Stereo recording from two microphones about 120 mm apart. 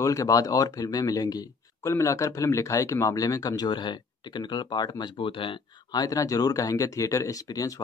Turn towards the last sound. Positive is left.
turn(degrees=30)  # may be behind; listen again after turning